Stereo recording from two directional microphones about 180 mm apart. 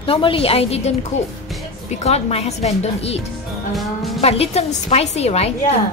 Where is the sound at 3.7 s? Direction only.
Centre (ahead or behind).